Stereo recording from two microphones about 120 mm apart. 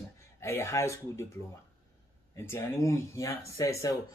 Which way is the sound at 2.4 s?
20° left (ahead or behind).